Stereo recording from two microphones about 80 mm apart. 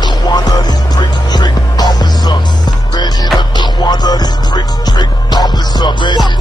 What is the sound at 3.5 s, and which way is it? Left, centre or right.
Music, left.